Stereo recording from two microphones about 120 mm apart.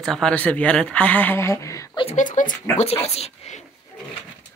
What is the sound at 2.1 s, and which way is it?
Speech, 90° left.